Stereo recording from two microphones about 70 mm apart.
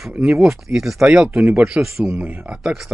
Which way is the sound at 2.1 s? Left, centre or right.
Centre.